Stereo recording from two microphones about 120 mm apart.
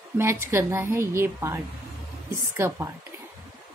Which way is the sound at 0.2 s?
20° right (ahead or behind).